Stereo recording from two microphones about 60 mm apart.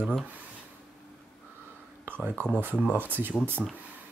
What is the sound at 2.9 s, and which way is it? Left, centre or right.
Speech, right.